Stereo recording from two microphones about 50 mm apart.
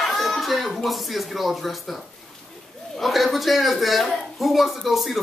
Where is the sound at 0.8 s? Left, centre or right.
Centre.